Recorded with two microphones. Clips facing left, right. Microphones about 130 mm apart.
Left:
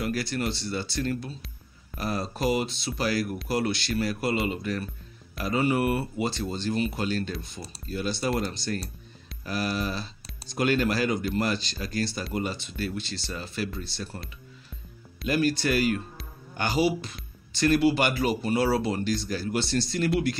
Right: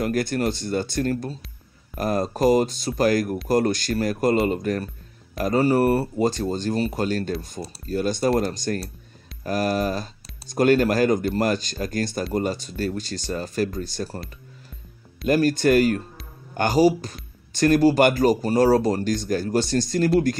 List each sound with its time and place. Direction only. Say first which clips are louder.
0.0 s speech: right 6 dB; 50° right (ahead or behind)
15.2 s speech: right 6 dB; 45° right (ahead or behind)